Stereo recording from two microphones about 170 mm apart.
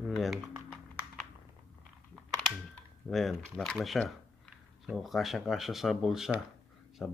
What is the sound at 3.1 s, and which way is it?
Speech, centre (ahead or behind).